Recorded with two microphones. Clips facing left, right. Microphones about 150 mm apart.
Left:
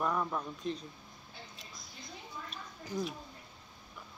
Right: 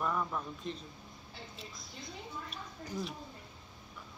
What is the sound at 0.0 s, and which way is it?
Speech, 10° left (ahead or behind).